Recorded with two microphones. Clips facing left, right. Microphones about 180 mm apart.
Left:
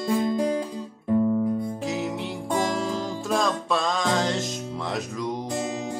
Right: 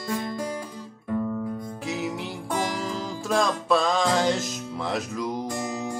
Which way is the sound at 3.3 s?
Centre (ahead or behind).